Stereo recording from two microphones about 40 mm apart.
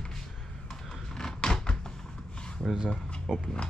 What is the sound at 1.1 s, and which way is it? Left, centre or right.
Door, centre.